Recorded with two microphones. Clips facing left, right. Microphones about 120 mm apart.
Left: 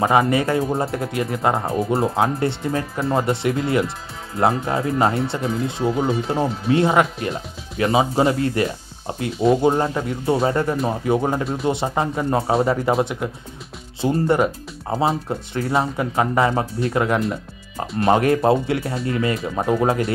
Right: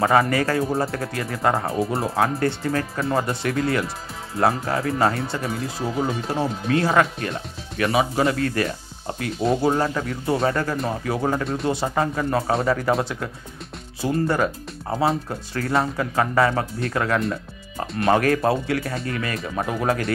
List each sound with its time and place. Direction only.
0.0 s speech: 20° left (ahead or behind)
11.4 s speech: centre (ahead or behind)
11.7 s speech: 20° left (ahead or behind)